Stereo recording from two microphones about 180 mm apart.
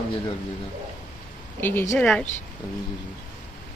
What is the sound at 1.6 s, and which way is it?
Speech, 10° left (ahead or behind).